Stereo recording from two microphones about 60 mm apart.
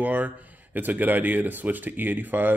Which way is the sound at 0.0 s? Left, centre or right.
Right.